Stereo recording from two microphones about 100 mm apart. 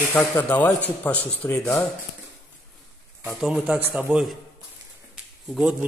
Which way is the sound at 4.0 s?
15° right (ahead or behind).